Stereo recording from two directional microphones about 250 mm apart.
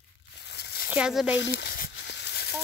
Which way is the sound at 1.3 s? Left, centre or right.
Left.